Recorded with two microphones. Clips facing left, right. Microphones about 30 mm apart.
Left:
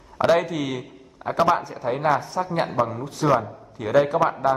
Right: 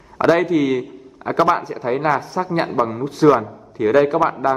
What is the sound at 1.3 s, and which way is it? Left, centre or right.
A man's voice, right.